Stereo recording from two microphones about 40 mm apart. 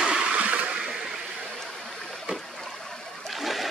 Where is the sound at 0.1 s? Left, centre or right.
Right.